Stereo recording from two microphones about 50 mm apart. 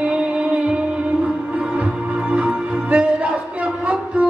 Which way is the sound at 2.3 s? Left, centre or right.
Right.